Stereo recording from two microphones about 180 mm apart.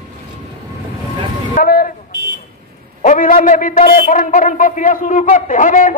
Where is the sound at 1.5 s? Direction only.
55° left (ahead or behind).